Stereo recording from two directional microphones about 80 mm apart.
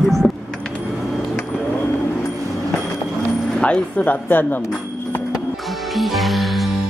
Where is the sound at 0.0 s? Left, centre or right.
Centre.